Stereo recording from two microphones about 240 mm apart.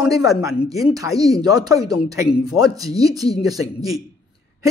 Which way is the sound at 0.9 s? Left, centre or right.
Centre.